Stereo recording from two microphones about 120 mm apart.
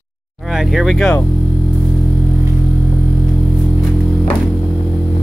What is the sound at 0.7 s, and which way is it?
Speech, centre (ahead or behind).